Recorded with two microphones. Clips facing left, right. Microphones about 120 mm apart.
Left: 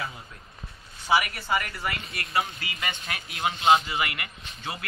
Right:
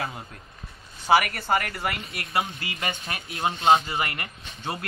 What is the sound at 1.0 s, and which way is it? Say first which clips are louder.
Speech: right 4 dB; 60° right (ahead or behind).